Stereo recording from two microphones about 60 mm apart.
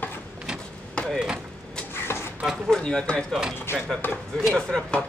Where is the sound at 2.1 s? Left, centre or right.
Left.